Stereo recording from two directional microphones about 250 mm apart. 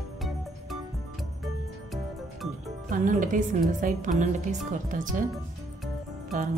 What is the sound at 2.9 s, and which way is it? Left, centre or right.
A woman's voice, right.